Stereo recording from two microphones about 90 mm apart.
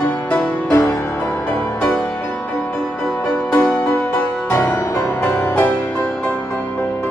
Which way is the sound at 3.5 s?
25° left (ahead or behind).